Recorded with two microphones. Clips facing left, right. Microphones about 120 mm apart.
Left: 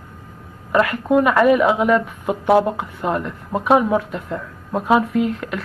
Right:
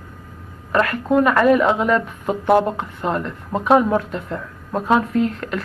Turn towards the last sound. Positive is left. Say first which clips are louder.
# even
turn(degrees=5)  # may be behind; listen again after turning